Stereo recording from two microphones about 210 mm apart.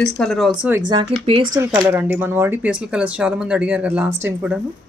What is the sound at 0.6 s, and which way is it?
Speech, 10° right (ahead or behind).